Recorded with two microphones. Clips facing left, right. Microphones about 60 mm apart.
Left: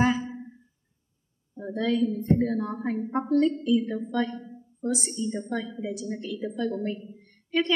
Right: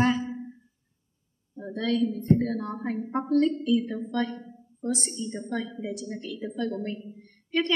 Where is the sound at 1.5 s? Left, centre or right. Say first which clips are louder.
Left 1 dB; centre.